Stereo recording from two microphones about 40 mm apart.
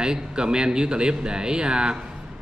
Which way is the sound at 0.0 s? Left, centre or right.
Centre.